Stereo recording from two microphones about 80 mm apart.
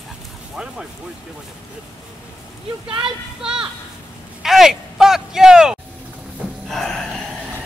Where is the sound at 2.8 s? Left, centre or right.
Right.